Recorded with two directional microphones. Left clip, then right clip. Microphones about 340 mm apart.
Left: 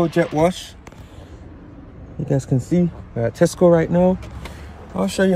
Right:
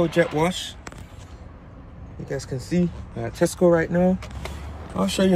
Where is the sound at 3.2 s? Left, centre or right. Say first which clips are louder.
Left 6 dB; left.